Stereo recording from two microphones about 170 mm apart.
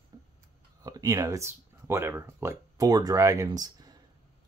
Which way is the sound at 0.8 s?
20° right (ahead or behind).